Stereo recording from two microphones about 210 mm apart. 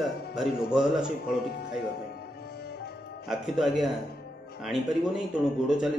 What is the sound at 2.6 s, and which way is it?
Music, 50° left (ahead or behind).